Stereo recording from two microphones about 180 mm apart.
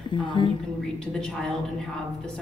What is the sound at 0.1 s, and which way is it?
Speech, 25° left (ahead or behind).